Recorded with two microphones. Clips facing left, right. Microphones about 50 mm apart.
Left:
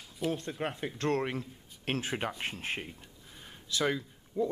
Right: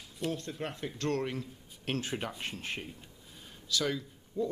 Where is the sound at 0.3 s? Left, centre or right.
Centre.